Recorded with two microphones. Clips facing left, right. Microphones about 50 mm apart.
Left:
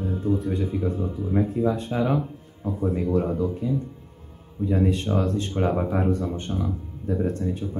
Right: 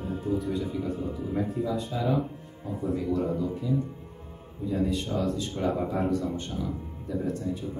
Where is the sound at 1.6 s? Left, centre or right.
Left.